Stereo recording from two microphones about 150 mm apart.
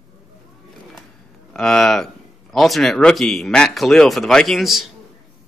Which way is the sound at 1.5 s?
5° left (ahead or behind).